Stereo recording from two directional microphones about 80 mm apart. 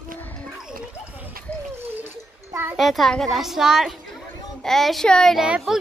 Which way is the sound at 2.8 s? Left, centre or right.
Centre.